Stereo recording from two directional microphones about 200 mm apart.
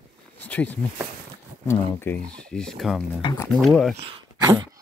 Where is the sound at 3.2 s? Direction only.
20° left (ahead or behind).